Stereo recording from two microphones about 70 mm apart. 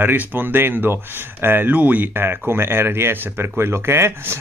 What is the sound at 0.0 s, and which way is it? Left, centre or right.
Speech, right.